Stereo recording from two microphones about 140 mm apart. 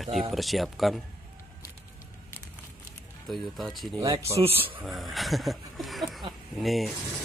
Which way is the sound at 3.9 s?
30° right (ahead or behind).